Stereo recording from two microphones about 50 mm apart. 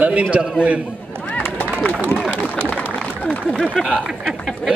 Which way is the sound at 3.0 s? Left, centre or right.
Left.